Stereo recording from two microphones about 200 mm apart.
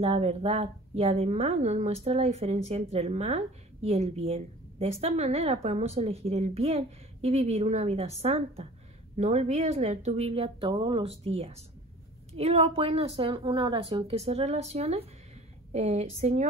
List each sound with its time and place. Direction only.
0.0 s a woman's voice: 30° right (ahead or behind)